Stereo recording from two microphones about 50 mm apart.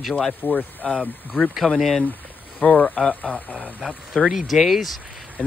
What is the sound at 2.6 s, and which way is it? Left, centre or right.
Speech, left.